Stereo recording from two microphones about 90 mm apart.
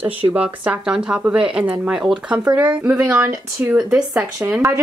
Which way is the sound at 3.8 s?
10° right (ahead or behind).